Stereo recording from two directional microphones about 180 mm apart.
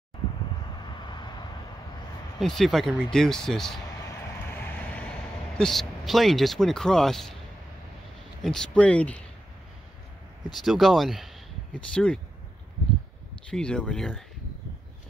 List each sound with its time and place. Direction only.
0.8 s vehicle: 25° left (ahead or behind)
2.4 s speech: centre (ahead or behind)
4.6 s vehicle: 10° left (ahead or behind)
5.6 s speech: centre (ahead or behind)
8.4 s speech: 5° left (ahead or behind)
10.5 s speech: centre (ahead or behind)
13.5 s speech: 5° left (ahead or behind)